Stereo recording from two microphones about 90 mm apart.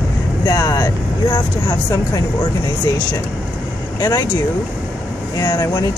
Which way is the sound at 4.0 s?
50° left (ahead or behind).